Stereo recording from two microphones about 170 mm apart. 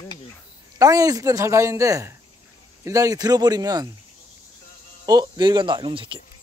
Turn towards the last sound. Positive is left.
turn(degrees=-30)  # may be behind; listen again after turning